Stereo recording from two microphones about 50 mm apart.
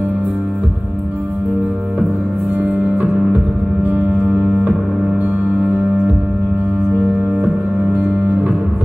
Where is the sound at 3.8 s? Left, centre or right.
Right.